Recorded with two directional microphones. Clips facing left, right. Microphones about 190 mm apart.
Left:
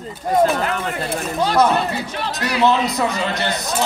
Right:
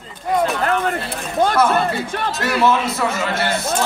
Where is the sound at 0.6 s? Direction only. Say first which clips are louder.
Right 3 dB; 50° right (ahead or behind).